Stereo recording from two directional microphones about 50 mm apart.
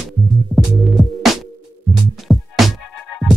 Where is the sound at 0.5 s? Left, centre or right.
Left.